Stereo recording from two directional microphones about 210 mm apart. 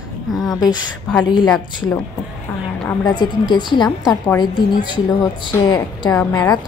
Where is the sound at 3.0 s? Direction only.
20° left (ahead or behind).